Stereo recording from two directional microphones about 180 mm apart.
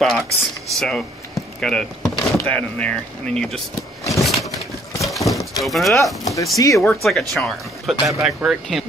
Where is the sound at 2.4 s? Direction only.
10° left (ahead or behind).